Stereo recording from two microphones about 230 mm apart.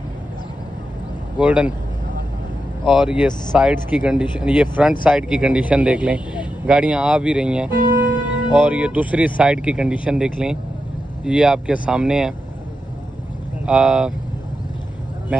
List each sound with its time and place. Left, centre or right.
1.4 s speech: centre
2.8 s speech: centre
7.7 s speech: centre
8.5 s speech: centre
13.7 s speech: centre